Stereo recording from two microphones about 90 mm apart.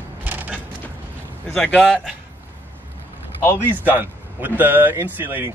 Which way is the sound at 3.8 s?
20° right (ahead or behind).